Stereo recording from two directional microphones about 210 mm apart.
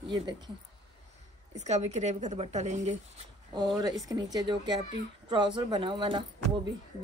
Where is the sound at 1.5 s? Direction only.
35° right (ahead or behind).